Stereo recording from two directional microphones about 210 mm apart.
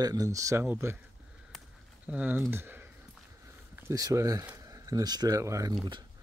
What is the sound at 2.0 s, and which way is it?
Speech, 5° right (ahead or behind).